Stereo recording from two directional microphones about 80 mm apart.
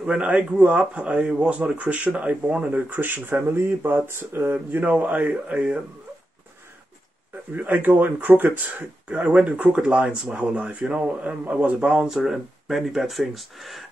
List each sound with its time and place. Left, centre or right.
0.0 s speech: centre
7.5 s speech: right; by 13.8 s centre